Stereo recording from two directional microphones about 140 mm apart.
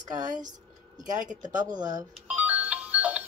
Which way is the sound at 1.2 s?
65° right (ahead or behind).